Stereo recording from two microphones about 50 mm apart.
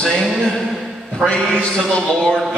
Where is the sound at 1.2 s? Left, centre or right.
Centre.